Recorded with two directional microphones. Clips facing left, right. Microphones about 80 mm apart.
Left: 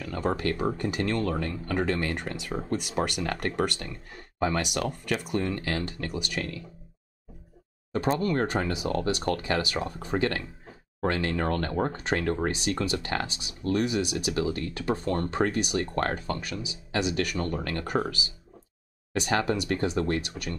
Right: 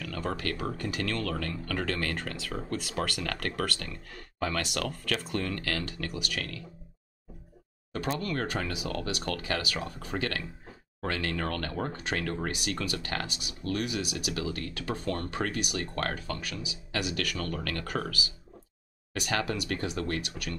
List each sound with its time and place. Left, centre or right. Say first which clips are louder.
0.0 s speech: left 5 dB; left
7.9 s speech: left 6 dB; left